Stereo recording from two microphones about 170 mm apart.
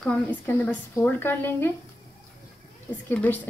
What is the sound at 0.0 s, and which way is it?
A woman's voice, 5° left (ahead or behind).